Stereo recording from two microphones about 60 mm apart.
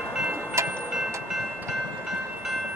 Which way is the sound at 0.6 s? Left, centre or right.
Right.